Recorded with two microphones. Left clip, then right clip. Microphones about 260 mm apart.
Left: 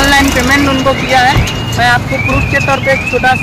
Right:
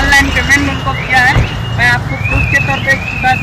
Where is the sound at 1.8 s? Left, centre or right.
Centre.